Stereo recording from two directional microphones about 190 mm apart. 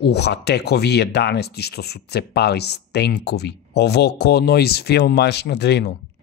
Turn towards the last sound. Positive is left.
turn(degrees=65)  # may be behind; listen again after turning